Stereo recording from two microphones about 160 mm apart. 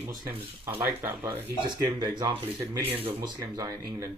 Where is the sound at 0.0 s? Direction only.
15° right (ahead or behind).